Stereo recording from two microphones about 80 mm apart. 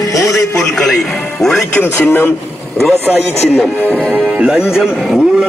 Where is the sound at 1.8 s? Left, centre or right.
Left.